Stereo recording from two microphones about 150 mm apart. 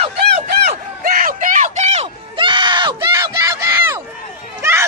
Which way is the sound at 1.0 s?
65° right (ahead or behind).